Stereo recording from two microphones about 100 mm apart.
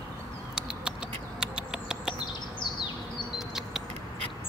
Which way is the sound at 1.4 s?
5° right (ahead or behind).